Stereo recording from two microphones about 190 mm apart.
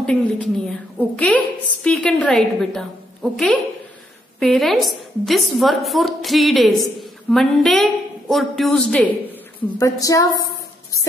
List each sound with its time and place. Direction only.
0.0 s a woman's voice: 5° left (ahead or behind)
9.8 s a woman's voice: 15° left (ahead or behind)